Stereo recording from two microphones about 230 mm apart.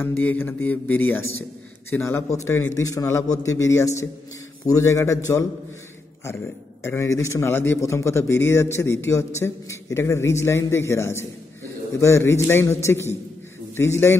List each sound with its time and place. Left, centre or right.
0.0 s a man's voice: centre
6.8 s a man's voice: centre